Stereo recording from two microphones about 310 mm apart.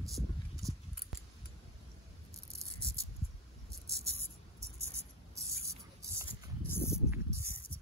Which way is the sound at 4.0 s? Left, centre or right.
Centre.